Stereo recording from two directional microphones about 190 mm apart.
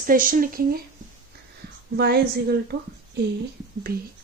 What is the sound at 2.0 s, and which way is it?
Speech, 60° right (ahead or behind).